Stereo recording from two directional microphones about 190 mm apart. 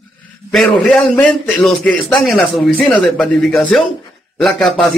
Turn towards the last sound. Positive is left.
turn(degrees=0)  # may be behind; listen again after turning